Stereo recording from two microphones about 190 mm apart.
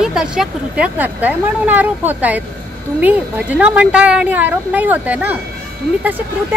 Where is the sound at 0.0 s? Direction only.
5° right (ahead or behind).